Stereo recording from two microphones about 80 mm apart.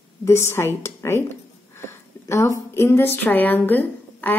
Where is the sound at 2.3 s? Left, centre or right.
Left.